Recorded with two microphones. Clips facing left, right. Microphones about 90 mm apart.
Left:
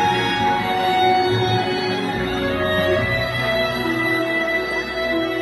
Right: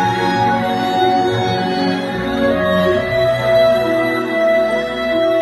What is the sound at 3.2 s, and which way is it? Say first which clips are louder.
Music: right 10 dB; 30° right (ahead or behind).